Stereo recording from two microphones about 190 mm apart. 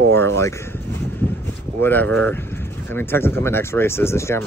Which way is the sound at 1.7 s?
10° left (ahead or behind).